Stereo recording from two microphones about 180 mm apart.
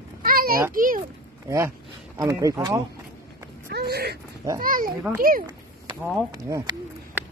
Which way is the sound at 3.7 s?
60° right (ahead or behind).